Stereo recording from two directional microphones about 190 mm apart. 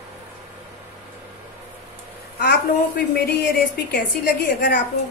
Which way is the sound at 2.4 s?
55° left (ahead or behind).